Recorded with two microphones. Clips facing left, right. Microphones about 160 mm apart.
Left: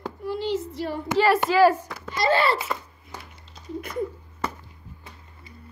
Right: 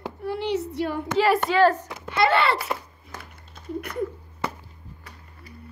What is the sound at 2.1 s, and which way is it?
Speech, 60° right (ahead or behind).